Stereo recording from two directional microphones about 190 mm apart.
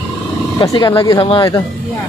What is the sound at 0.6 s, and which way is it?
Speech, 20° left (ahead or behind).